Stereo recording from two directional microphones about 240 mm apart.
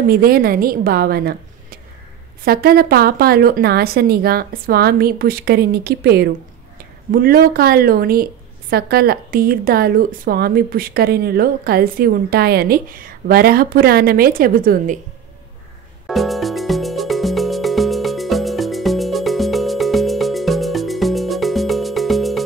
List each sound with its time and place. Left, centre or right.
0.1 s speech: right
16.1 s music: centre